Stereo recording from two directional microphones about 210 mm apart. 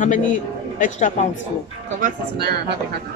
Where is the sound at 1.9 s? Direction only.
45° right (ahead or behind).